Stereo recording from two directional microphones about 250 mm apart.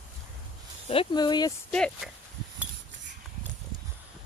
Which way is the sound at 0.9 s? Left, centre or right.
Centre.